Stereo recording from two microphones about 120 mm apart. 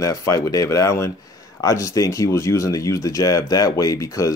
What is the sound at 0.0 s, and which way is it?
Speech, 30° left (ahead or behind).